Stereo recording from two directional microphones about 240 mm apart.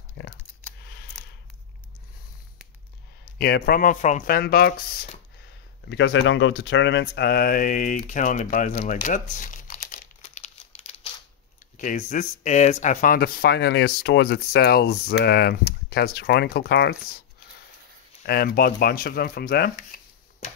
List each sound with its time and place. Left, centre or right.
0.2 s speech: left
3.3 s speech: left
5.9 s speech: left
18.2 s speech: left